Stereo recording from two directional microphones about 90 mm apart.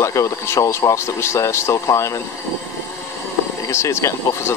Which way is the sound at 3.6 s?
30° left (ahead or behind).